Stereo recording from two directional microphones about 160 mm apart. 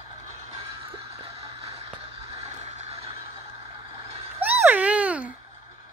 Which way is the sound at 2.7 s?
40° right (ahead or behind).